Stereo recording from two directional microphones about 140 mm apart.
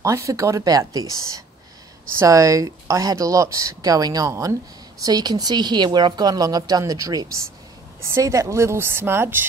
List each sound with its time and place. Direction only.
0.0 s speech: 20° right (ahead or behind)
2.1 s speech: 25° right (ahead or behind)